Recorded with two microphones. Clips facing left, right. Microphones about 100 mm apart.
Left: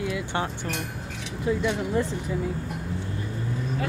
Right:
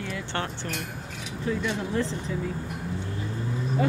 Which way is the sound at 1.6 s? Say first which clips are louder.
Left 2 dB; 15° left (ahead or behind).